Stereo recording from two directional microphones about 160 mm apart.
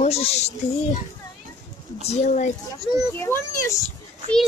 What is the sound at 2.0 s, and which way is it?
Speech, 45° left (ahead or behind).